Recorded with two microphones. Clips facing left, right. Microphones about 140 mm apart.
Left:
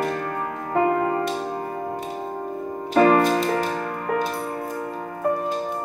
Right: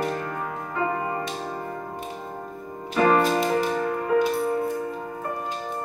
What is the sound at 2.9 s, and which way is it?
Music, 50° left (ahead or behind).